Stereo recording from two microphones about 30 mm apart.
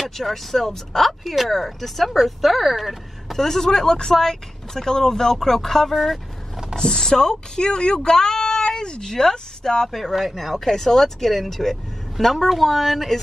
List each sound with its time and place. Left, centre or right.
0.0 s speech: centre
3.3 s speech: centre
10.1 s speech: centre
10.5 s speech: centre